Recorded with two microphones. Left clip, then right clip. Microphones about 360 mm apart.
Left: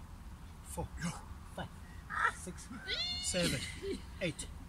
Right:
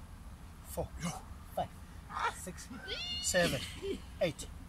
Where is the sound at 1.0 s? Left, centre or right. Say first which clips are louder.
Right 1 dB; centre.